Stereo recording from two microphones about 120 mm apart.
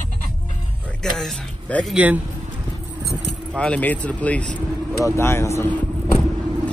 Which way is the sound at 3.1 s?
10° left (ahead or behind).